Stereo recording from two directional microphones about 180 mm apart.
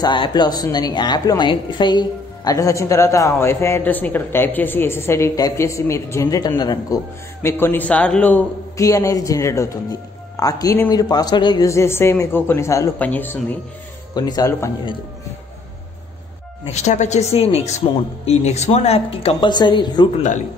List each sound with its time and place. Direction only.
0.0 s a woman's voice: 25° left (ahead or behind)
14.1 s speech: 20° left (ahead or behind)
16.6 s speech: 40° left (ahead or behind)